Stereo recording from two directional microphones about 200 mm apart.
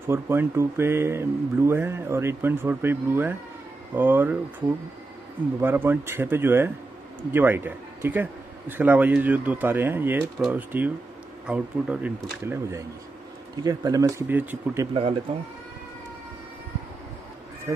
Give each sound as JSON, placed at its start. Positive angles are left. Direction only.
{"t": 0.0, "sound": "a man's voice", "side_deg": -10}
{"t": 13.7, "sound": "speech", "side_deg": -15}
{"t": 15.3, "sound": "speech", "side_deg": -25}
{"t": 17.7, "sound": "speech", "side_deg": -15}